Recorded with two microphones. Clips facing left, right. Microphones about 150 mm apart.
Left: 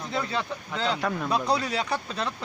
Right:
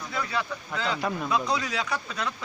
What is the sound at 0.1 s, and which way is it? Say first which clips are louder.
Speech: left 1 dB; 25° left (ahead or behind).